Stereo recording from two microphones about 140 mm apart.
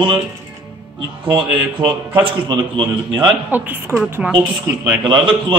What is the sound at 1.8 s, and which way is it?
Speech, 35° right (ahead or behind).